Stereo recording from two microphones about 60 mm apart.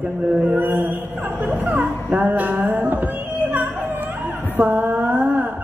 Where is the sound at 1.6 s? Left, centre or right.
Right.